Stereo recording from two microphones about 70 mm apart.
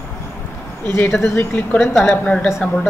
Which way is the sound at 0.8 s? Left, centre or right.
Left.